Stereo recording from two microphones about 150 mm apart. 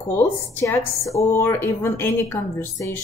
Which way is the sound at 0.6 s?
20° left (ahead or behind).